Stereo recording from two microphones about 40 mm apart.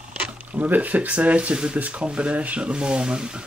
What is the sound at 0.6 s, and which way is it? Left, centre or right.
Speech, right.